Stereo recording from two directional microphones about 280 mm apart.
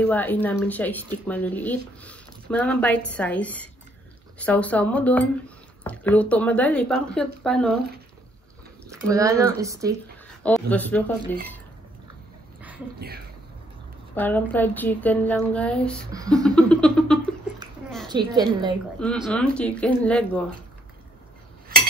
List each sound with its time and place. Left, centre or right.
0.0 s speech: centre
9.1 s a woman's voice: centre
10.4 s speech: centre
14.1 s a woman's voice: centre
16.1 s a woman's voice: centre
16.4 s speech: centre
17.6 s a sound: centre
18.0 s a woman's voice: centre
19.2 s speech: centre